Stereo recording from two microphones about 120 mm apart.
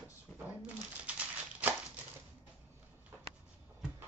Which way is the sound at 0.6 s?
10° right (ahead or behind).